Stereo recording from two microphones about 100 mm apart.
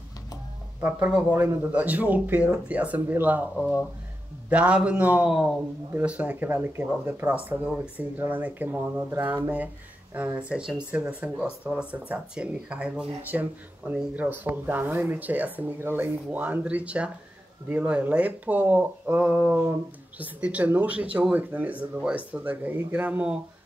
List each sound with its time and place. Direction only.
0.7 s speech: 20° right (ahead or behind)
20.2 s speech: 15° right (ahead or behind)